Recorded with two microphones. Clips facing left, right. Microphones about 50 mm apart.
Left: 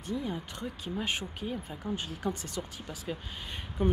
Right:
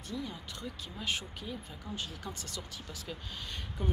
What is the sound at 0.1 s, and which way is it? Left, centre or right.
Speech, left.